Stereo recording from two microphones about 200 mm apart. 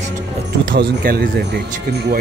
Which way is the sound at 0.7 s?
50° right (ahead or behind).